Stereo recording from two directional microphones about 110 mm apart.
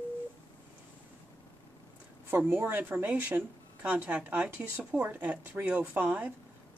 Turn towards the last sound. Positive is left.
turn(degrees=-15)  # may be behind; listen again after turning